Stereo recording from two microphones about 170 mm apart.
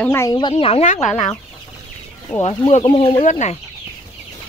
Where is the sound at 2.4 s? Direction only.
40° left (ahead or behind).